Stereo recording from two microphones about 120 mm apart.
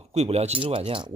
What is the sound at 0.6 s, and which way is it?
Speech, 45° right (ahead or behind).